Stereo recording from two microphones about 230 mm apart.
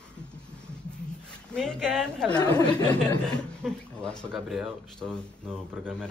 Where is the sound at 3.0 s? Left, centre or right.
Centre.